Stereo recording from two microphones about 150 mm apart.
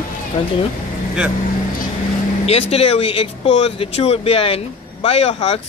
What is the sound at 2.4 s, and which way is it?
Speech, 40° left (ahead or behind).